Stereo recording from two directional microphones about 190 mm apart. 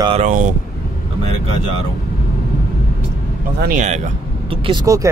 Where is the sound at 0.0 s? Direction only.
30° right (ahead or behind).